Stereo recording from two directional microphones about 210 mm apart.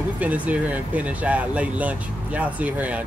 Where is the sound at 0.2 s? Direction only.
5° right (ahead or behind).